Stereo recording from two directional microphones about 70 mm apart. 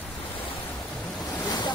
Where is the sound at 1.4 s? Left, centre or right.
Left.